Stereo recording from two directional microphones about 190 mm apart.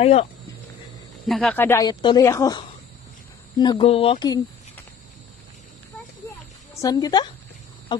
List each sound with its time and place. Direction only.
0.0 s speech: 35° left (ahead or behind)
1.2 s speech: centre (ahead or behind); by 4.4 s 25° left (ahead or behind)
6.7 s speech: 20° left (ahead or behind)
7.9 s a sound: 25° left (ahead or behind)